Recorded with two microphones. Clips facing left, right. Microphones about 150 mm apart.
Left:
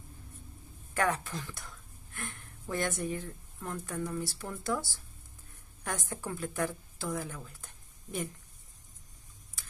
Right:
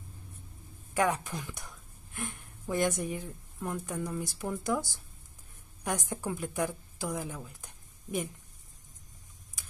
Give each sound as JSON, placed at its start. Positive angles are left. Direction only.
{"t": 0.9, "sound": "a woman's voice", "side_deg": -15}